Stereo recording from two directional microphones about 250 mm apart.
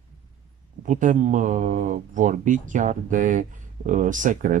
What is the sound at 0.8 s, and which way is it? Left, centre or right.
Speech, right.